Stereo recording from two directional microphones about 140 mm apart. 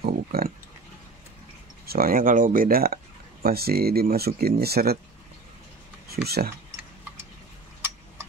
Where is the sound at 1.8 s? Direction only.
90° right.